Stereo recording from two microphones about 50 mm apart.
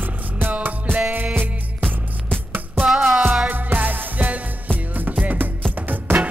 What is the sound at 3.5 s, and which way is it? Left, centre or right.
Music, right.